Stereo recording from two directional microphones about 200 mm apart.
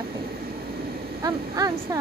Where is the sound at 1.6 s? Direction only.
20° right (ahead or behind).